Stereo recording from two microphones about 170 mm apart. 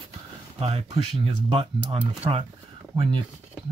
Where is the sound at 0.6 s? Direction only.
35° right (ahead or behind).